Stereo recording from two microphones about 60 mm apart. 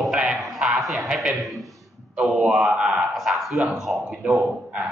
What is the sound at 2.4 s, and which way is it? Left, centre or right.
Speech, centre.